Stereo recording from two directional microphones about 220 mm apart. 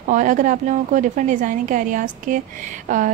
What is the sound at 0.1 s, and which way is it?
A woman's voice, 35° right (ahead or behind).